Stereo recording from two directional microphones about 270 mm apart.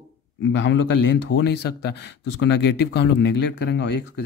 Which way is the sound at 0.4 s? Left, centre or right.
Left.